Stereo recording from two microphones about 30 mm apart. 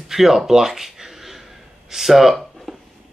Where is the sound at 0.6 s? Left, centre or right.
Centre.